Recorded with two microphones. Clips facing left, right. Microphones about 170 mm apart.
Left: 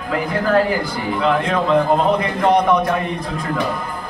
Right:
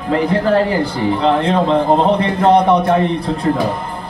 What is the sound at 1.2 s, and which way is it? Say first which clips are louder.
A man's voice: right 2 dB; 30° right (ahead or behind).